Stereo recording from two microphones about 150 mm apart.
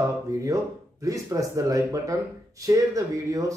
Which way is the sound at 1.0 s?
20° right (ahead or behind).